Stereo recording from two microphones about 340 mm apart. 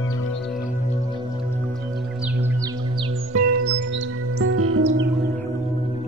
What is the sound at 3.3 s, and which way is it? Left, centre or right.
Music, right.